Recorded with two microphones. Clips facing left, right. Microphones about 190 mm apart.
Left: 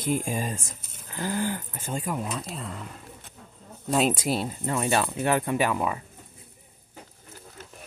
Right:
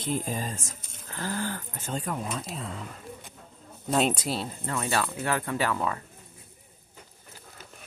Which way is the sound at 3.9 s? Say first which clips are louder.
Left 2 dB; 5° left (ahead or behind).